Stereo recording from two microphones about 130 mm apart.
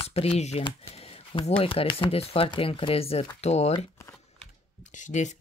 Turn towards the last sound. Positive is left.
turn(degrees=70)  # may be behind; listen again after turning